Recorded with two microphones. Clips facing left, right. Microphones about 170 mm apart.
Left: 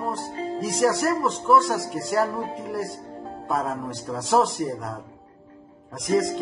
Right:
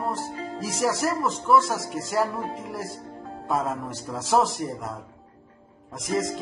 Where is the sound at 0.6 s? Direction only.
Centre (ahead or behind).